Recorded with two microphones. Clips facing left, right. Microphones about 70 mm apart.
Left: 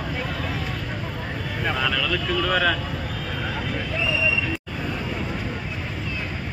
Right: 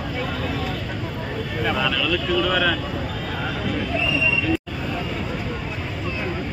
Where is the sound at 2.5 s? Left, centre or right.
Left.